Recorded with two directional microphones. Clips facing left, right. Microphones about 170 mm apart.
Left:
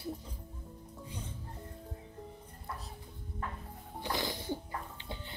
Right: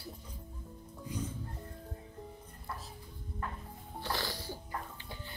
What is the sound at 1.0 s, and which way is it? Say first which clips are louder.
Music: right 8 dB; 30° left (ahead or behind).